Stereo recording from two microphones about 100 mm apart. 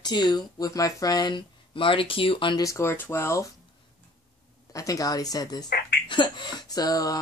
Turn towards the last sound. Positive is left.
turn(degrees=35)  # may be behind; listen again after turning